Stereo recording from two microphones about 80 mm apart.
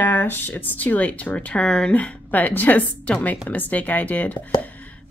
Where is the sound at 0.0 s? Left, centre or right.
Left.